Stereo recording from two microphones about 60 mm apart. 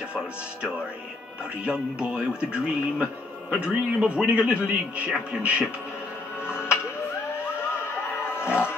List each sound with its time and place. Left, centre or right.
0.1 s speech: centre
6.4 s music: left